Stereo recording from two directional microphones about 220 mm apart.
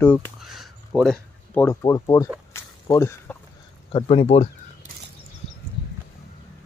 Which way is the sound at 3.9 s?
25° left (ahead or behind).